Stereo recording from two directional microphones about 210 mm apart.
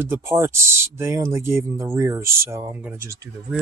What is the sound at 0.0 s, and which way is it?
Speech, 10° right (ahead or behind).